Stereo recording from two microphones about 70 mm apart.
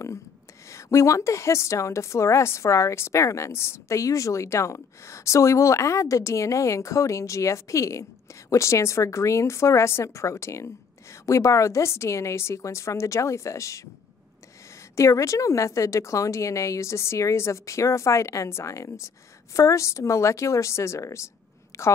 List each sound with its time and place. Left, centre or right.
0.7 s a woman's voice: left
15.0 s a woman's voice: left
21.7 s a sound: left